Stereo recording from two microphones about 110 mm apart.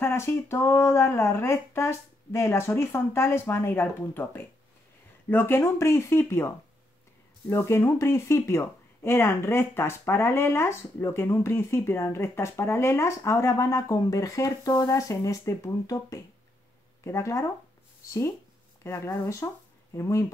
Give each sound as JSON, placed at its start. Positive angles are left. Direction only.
{"t": 0.0, "sound": "speech", "side_deg": 20}
{"t": 18.8, "sound": "speech", "side_deg": 25}